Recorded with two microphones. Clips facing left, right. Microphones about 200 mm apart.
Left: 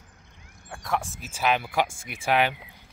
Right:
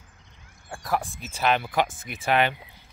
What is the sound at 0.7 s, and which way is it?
Speech, centre (ahead or behind).